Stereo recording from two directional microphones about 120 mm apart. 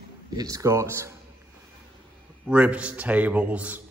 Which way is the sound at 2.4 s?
10° right (ahead or behind).